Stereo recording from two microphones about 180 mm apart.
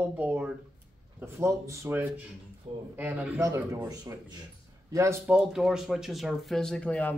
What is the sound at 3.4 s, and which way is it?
A man's voice, 20° right (ahead or behind).